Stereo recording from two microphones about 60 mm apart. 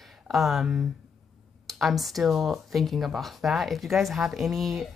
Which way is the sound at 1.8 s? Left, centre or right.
Centre.